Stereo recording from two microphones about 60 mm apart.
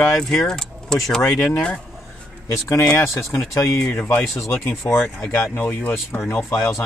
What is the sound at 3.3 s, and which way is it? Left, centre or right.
Speech, left.